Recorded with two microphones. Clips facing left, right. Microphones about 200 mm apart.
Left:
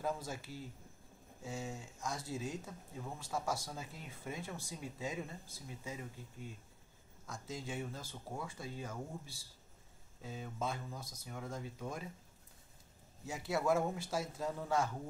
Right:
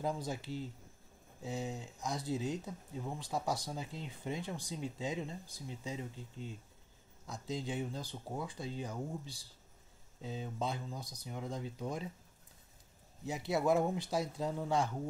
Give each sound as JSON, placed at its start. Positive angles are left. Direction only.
{"t": 0.0, "sound": "speech", "side_deg": -20}
{"t": 13.2, "sound": "speech", "side_deg": -20}